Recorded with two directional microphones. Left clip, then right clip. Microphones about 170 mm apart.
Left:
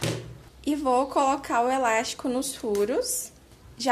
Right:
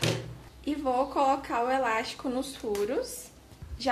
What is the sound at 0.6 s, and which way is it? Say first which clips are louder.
Speech: left 4 dB; 50° left (ahead or behind).